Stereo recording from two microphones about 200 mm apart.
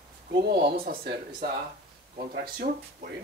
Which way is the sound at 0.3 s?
55° right (ahead or behind).